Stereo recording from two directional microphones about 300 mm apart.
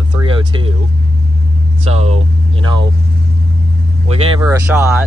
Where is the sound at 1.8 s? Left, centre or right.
Centre.